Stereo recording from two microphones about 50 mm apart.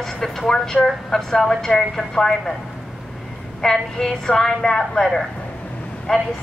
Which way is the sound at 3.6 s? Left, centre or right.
Centre.